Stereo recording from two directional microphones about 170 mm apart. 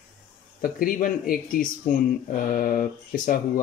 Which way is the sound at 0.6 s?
55° left (ahead or behind).